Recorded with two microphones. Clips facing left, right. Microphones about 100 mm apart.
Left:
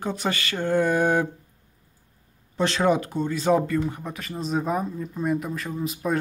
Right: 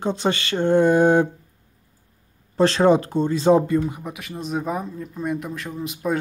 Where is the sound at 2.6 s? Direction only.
35° right (ahead or behind).